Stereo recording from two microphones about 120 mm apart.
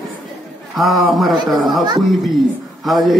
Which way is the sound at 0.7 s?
Centre (ahead or behind).